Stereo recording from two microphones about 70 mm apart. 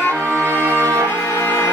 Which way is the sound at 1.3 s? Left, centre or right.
Left.